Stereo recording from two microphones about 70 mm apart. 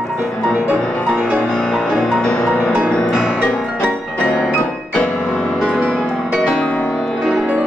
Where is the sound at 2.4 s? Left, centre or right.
Left.